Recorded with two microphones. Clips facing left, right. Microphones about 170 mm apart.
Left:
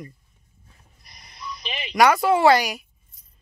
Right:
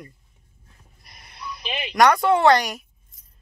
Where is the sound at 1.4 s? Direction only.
60° right (ahead or behind).